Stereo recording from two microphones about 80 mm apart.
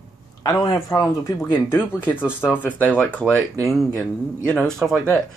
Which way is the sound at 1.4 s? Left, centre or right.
Left.